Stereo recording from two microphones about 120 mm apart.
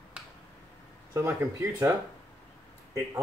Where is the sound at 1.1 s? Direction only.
25° right (ahead or behind).